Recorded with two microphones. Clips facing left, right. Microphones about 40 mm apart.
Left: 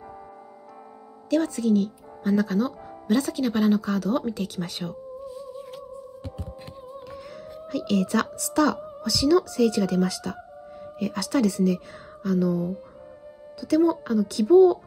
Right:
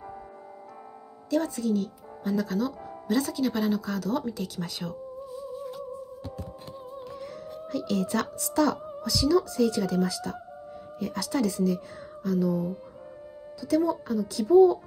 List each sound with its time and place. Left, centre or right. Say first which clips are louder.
1.3 s speech: left 4 dB; left
5.2 s music: even; left
7.1 s music: even; left
9.0 s speech: left 3 dB; left